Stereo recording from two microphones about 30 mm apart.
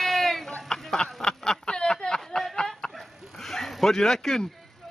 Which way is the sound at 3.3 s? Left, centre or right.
Centre.